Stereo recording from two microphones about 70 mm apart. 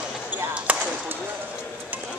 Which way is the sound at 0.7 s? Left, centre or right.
Right.